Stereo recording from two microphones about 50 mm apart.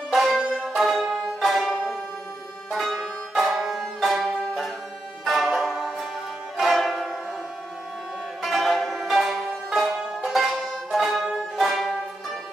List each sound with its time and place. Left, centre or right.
0.1 s music: centre
3.3 s music: centre
8.4 s music: centre